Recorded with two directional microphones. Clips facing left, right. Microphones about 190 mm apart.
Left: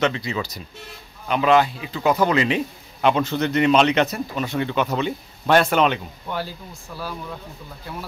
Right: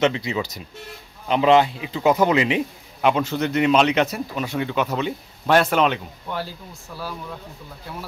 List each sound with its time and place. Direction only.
0.0 s speech: 20° right (ahead or behind); by 7.3 s 5° right (ahead or behind)